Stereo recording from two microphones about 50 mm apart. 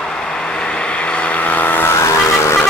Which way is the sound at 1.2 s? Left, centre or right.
Left.